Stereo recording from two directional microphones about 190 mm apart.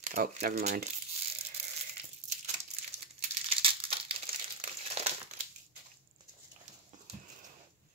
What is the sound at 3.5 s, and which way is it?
Crumpling, 30° right (ahead or behind).